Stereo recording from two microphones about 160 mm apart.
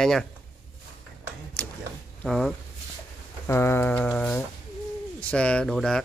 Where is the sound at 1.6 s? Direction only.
10° left (ahead or behind).